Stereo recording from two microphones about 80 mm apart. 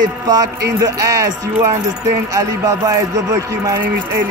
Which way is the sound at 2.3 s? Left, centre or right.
Right.